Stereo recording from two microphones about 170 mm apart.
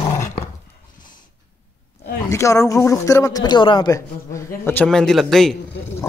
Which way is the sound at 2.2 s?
20° left (ahead or behind).